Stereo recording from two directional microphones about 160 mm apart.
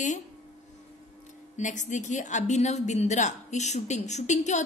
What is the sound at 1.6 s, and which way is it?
A woman's voice, 50° left (ahead or behind).